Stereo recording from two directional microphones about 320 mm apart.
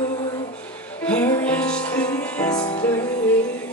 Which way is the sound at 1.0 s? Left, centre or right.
Centre.